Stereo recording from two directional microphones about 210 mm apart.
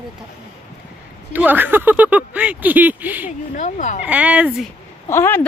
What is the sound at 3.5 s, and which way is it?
Speech, 35° left (ahead or behind).